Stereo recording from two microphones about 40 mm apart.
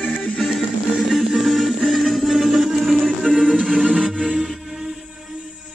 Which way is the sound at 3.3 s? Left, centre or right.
Right.